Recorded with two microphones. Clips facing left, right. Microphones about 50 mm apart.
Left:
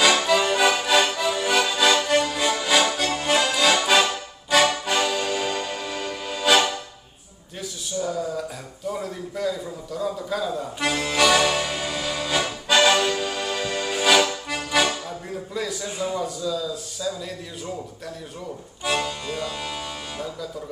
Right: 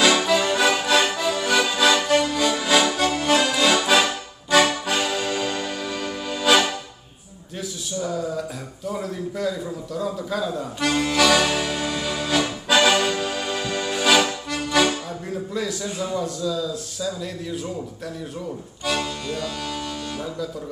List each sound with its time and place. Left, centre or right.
0.0 s accordion: centre
5.4 s music: centre
8.0 s a man's voice: centre
11.0 s accordion: centre
13.2 s music: centre
14.5 s accordion: centre
15.5 s a man's voice: centre
18.9 s music: centre